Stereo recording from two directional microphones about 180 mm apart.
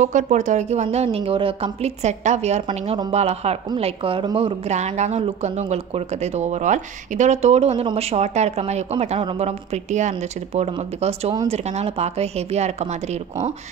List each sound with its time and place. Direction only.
0.0 s speech: 40° right (ahead or behind)
4.6 s speech: 40° right (ahead or behind)